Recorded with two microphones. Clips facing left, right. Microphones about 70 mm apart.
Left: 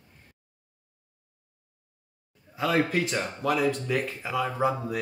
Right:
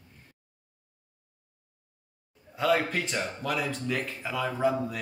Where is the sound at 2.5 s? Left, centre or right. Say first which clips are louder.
Left 1 dB; centre.